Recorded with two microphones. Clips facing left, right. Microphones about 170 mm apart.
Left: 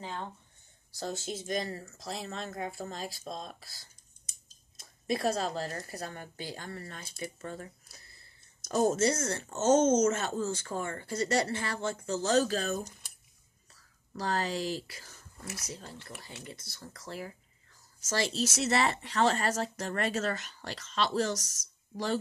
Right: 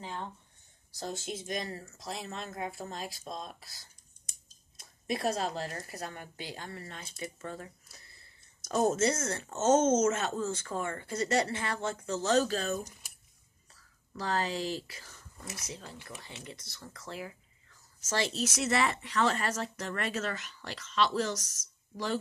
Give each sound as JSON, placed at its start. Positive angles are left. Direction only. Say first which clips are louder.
{"t": 1.2, "sound": "speech", "louder": "left 4 dB", "side_deg": 35}
{"t": 4.7, "sound": "speech", "louder": "left 2 dB", "side_deg": 35}
{"t": 8.7, "sound": "speech", "louder": "left 1 dB", "side_deg": 40}
{"t": 14.1, "sound": "speech", "louder": "even", "side_deg": 40}